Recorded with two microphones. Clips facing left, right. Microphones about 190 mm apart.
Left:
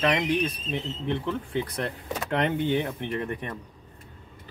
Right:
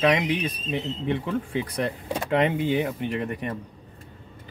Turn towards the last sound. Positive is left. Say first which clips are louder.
# right 2 dB
turn(degrees=-5)  # may be behind; listen again after turning